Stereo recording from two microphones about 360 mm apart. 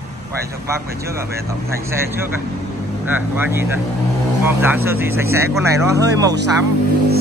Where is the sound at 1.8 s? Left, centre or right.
Centre.